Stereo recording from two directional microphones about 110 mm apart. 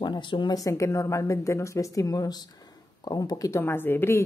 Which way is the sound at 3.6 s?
20° left (ahead or behind).